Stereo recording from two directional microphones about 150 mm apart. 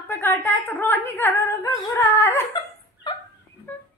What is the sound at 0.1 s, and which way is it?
Speech, 15° left (ahead or behind).